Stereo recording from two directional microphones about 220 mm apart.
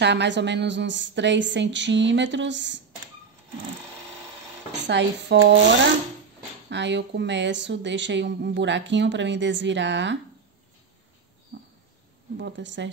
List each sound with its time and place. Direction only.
0.0 s speech: 50° right (ahead or behind)
4.8 s speech: 50° right (ahead or behind)
6.7 s speech: 55° right (ahead or behind)
12.4 s speech: 55° right (ahead or behind)